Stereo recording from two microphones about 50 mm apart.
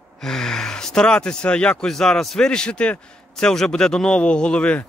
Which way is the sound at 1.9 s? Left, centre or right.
Centre.